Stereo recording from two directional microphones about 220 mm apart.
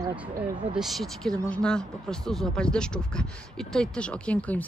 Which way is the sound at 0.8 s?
Centre (ahead or behind).